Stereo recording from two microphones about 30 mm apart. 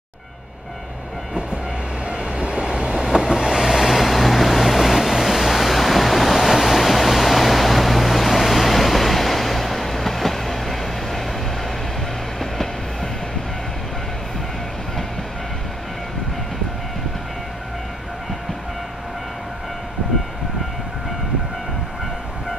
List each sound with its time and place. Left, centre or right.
2.1 s train: right
3.0 s vehicle: centre
12.4 s train: centre